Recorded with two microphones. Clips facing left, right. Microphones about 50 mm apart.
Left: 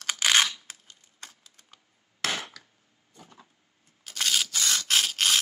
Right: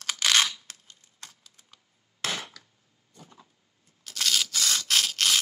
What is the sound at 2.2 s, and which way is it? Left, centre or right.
Wood, centre.